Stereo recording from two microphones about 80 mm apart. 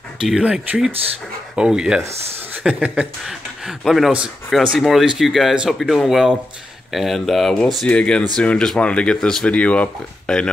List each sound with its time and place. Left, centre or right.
0.2 s speech: centre
3.3 s speech: centre